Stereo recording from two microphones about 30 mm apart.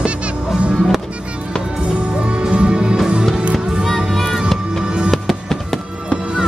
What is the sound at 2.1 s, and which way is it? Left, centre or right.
Music, right.